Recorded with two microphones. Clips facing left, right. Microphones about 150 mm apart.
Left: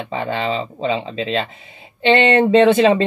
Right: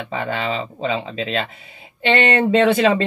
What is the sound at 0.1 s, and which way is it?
Speech, 30° left (ahead or behind).